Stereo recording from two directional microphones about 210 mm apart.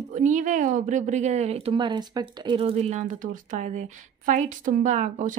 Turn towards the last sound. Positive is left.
turn(degrees=-35)  # may be behind; listen again after turning